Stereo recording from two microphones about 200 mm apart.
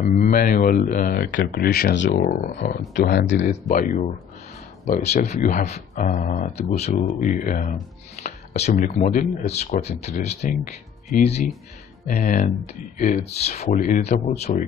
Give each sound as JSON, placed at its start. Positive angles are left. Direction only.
{"t": 0.0, "sound": "speech", "side_deg": 40}
{"t": 3.3, "sound": "speech", "side_deg": 35}
{"t": 12.1, "sound": "speech", "side_deg": 40}